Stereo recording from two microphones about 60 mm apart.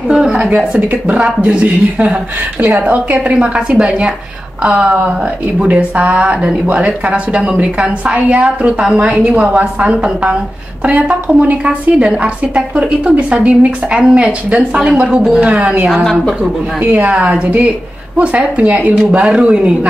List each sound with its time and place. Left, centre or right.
0.1 s a woman's voice: centre
15.9 s speech: centre
16.9 s speech: centre
17.3 s a woman's voice: right
18.9 s speech: centre